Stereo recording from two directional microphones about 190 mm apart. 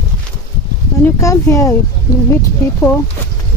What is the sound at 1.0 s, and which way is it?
Speech, 15° left (ahead or behind).